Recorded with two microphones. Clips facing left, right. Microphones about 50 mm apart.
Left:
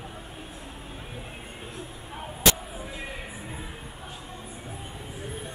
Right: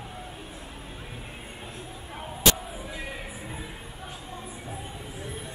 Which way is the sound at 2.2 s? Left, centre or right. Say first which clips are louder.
Even; centre.